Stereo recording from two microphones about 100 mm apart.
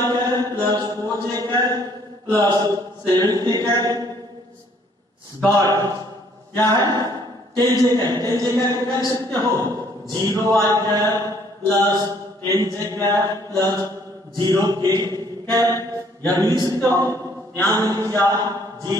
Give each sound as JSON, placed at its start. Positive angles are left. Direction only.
{"t": 0.0, "sound": "mantra", "side_deg": -40}
{"t": 2.3, "sound": "speech", "side_deg": -45}
{"t": 5.5, "sound": "a man's voice", "side_deg": -40}
{"t": 15.0, "sound": "mantra", "side_deg": -40}
{"t": 16.3, "sound": "a man's voice", "side_deg": -40}